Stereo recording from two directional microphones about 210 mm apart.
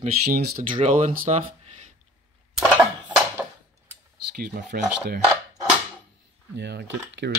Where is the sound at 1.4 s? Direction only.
30° right (ahead or behind).